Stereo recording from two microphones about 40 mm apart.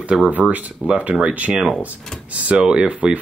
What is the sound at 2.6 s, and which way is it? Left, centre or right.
Speech, right.